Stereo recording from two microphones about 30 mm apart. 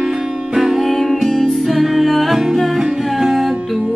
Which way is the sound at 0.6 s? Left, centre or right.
Centre.